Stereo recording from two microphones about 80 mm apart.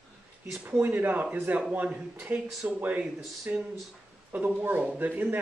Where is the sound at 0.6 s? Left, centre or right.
Right.